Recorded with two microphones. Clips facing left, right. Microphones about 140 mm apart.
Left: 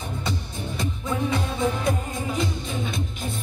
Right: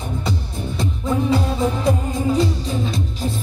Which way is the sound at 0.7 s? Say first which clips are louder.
Right 6 dB; 30° right (ahead or behind).